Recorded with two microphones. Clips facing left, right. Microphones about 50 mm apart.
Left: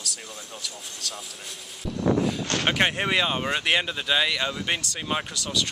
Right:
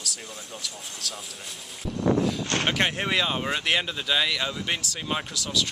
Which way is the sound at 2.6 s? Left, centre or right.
Centre.